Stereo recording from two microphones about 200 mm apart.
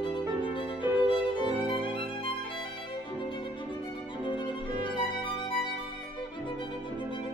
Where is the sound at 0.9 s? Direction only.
25° left (ahead or behind).